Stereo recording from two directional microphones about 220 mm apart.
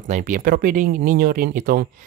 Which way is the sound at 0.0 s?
35° right (ahead or behind).